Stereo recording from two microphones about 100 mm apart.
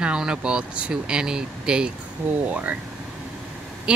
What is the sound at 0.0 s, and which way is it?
Speech, 10° right (ahead or behind).